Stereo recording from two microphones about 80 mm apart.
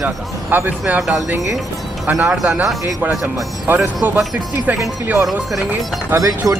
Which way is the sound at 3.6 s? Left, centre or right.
Right.